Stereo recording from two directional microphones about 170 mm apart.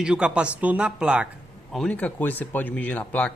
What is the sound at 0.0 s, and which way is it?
Speech, 5° right (ahead or behind).